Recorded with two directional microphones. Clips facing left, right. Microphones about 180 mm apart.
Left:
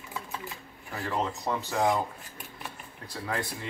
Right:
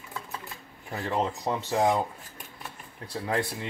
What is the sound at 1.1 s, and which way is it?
Speech, 25° right (ahead or behind).